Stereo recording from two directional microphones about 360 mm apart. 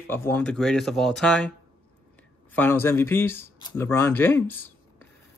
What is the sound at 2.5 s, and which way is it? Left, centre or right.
Speech, centre.